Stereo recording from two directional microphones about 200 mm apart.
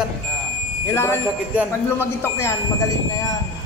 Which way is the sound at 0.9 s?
10° left (ahead or behind).